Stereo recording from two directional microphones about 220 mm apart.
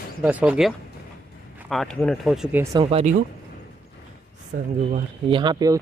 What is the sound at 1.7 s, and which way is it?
Speech, centre (ahead or behind).